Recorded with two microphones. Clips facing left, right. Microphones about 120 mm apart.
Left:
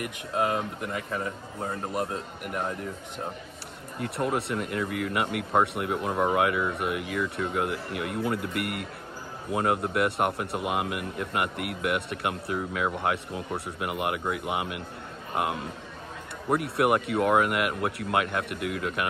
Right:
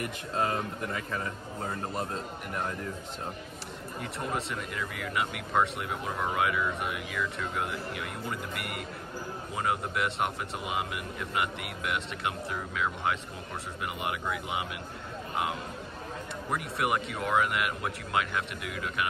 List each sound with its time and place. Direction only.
0.3 s speech: 10° left (ahead or behind)
4.0 s speech: 55° left (ahead or behind)